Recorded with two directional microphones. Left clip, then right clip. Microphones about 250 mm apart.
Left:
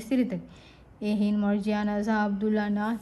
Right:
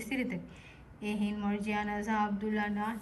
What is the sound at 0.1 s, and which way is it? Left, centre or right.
Speech, left.